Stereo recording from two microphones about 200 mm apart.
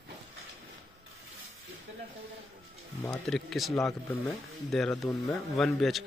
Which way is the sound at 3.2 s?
Centre (ahead or behind).